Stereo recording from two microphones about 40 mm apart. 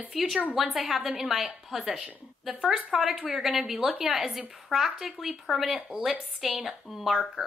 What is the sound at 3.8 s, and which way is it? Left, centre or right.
Speech, right.